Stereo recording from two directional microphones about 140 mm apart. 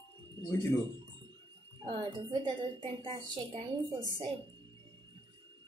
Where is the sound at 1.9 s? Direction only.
35° right (ahead or behind).